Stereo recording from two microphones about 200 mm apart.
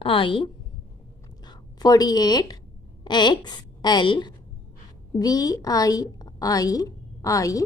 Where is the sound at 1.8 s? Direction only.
20° left (ahead or behind).